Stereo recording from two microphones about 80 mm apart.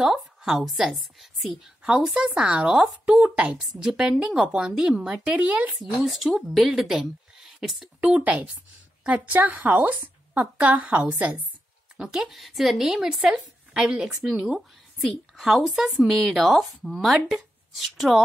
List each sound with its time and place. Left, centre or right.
0.0 s a woman's voice: centre
5.8 s a woman's voice: centre
8.0 s a woman's voice: centre
12.0 s a woman's voice: centre